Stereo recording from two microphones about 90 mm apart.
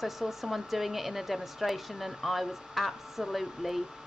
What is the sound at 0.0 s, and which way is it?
Speech, 5° right (ahead or behind).